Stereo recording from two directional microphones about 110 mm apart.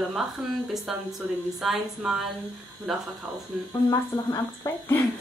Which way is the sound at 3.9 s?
30° left (ahead or behind).